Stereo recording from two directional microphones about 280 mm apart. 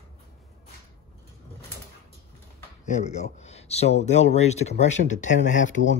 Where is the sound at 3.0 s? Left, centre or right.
Left.